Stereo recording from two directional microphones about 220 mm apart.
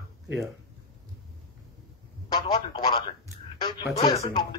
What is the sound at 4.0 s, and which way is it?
Music, 20° left (ahead or behind).